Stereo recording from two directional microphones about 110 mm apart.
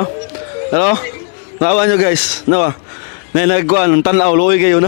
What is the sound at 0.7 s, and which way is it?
A man's voice, 20° left (ahead or behind).